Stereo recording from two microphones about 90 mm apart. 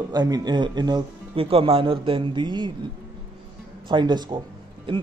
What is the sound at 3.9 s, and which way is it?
Speech, 55° right (ahead or behind).